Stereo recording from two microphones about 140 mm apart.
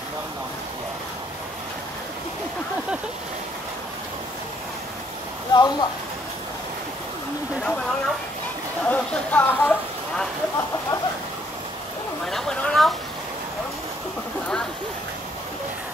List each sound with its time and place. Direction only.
5.5 s speech: 30° left (ahead or behind)
8.8 s speech: 10° left (ahead or behind)
12.3 s speech: 5° left (ahead or behind)